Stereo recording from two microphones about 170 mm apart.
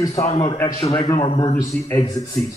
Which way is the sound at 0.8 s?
40° left (ahead or behind).